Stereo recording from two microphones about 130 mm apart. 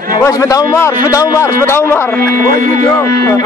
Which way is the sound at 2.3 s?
90° right.